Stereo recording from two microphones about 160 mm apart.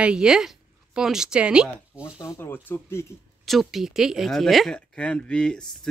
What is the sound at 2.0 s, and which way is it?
Speech, 15° left (ahead or behind).